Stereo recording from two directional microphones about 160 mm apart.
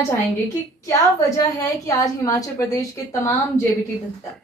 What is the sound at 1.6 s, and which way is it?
A woman's voice, 20° left (ahead or behind).